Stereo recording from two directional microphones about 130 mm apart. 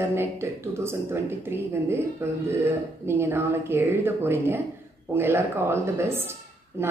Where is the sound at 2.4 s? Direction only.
20° right (ahead or behind).